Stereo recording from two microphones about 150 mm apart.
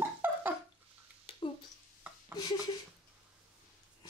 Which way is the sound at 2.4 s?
25° left (ahead or behind).